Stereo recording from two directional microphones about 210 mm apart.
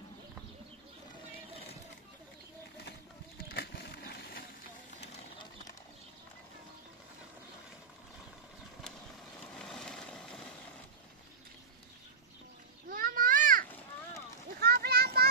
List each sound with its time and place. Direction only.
3.4 s vehicle: 50° left (ahead or behind)
9.5 s vehicle: centre (ahead or behind)
12.9 s a sound: 40° right (ahead or behind)